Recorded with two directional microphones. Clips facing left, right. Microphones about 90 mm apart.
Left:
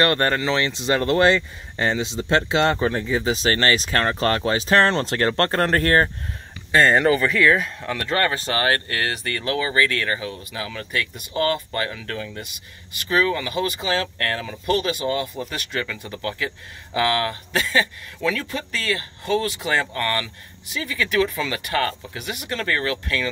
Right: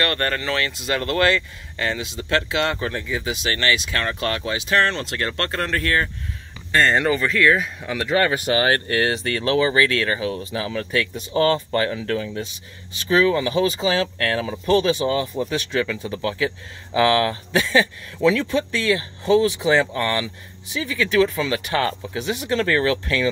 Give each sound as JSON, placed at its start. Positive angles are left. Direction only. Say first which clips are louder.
{"t": 0.0, "sound": "speech", "louder": "left 3 dB", "side_deg": 25}
{"t": 6.7, "sound": "speech", "louder": "left 2 dB", "side_deg": 5}
{"t": 18.2, "sound": "speech", "louder": "right 7 dB", "side_deg": -20}